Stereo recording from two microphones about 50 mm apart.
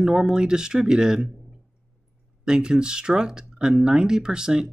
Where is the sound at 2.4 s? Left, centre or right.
Centre.